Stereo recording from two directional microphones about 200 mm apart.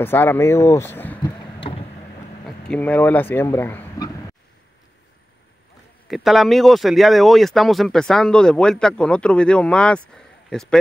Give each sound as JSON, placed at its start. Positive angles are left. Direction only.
{"t": 0.0, "sound": "speech", "side_deg": 10}
{"t": 1.2, "sound": "a sound", "side_deg": 25}
{"t": 2.4, "sound": "speech", "side_deg": 5}
{"t": 6.0, "sound": "speech", "side_deg": 0}